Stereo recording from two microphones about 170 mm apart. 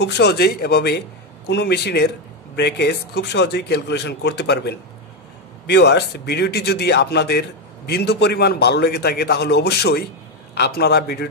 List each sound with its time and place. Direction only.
0.0 s a man's voice: 85° left; by 11.2 s 70° left (ahead or behind)